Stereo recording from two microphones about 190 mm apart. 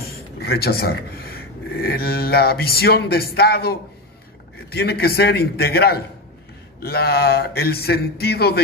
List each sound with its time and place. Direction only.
0.0 s speech: 55° left (ahead or behind)